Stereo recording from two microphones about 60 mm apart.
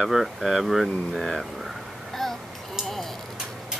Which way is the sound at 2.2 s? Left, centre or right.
Centre.